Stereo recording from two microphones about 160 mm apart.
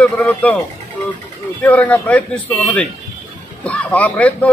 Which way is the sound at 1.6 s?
10° left (ahead or behind).